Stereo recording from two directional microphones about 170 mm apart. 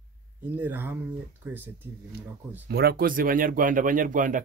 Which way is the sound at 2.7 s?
65° right (ahead or behind).